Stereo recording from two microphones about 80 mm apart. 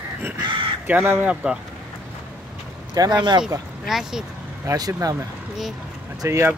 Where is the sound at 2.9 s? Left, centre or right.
Right.